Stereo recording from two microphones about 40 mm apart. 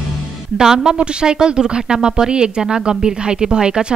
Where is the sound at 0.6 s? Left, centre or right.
Centre.